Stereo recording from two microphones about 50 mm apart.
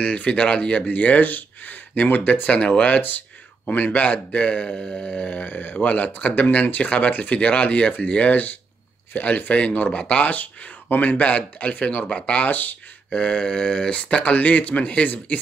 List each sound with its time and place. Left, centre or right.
0.0 s speech: left
12.4 s speech: left
13.1 s speech: centre